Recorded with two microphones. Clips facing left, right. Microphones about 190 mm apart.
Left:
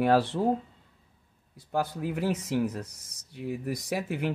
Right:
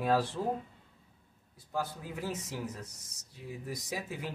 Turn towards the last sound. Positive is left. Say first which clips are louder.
# left 8 dB
turn(degrees=65)  # may be behind; listen again after turning